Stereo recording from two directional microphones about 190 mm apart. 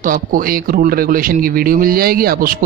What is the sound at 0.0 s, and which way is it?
Speech, 45° right (ahead or behind).